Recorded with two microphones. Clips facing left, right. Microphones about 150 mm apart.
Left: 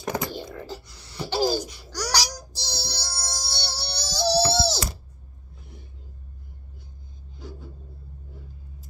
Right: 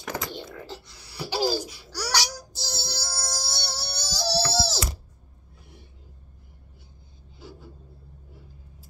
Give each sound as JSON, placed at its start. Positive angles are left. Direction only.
{"t": 0.0, "sound": "a sound", "side_deg": 15}
{"t": 0.6, "sound": "babbling", "side_deg": 0}
{"t": 2.6, "sound": "music", "side_deg": -5}
{"t": 4.5, "sound": "wail", "side_deg": -5}
{"t": 5.6, "sound": "vehicle", "side_deg": -5}
{"t": 7.3, "sound": "a sound", "side_deg": -5}